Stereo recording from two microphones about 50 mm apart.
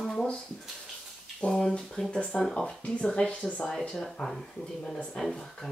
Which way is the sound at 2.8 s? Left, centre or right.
Left.